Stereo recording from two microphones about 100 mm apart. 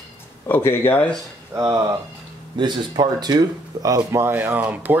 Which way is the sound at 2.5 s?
50° right (ahead or behind).